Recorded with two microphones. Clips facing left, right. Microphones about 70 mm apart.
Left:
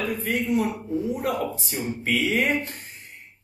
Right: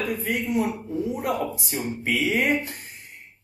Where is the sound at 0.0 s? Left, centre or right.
Centre.